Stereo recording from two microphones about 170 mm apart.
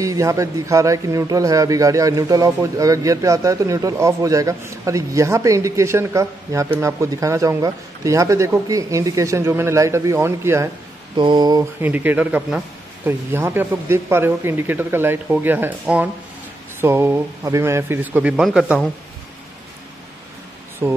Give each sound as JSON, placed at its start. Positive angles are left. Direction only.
{"t": 0.0, "sound": "a man's voice", "side_deg": -20}
{"t": 11.1, "sound": "a man's voice", "side_deg": -25}
{"t": 11.8, "sound": "speech", "side_deg": -10}
{"t": 20.8, "sound": "speech", "side_deg": -15}